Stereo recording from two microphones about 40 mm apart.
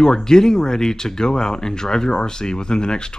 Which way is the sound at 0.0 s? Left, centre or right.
Centre.